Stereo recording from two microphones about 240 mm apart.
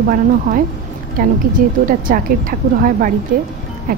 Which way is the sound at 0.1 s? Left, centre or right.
Right.